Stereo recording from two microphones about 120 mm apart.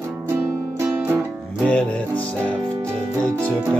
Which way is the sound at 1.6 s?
10° left (ahead or behind).